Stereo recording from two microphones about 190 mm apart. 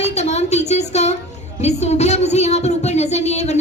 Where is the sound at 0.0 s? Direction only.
35° left (ahead or behind).